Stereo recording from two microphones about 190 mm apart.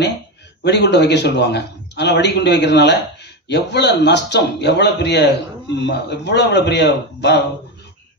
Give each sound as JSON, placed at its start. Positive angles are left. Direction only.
{"t": 0.7, "sound": "a man's voice", "side_deg": 65}